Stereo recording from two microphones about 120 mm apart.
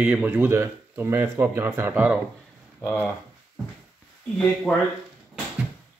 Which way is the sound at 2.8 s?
10° left (ahead or behind).